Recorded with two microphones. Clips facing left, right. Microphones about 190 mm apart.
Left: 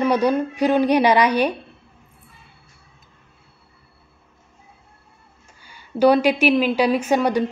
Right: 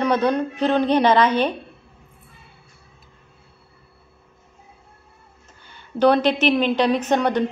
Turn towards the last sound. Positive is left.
turn(degrees=10)  # may be behind; listen again after turning